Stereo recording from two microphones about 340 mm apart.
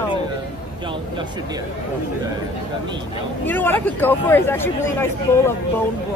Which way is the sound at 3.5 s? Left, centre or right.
Centre.